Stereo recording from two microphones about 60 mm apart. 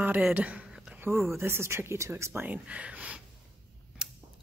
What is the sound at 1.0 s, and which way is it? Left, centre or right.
Speech, right.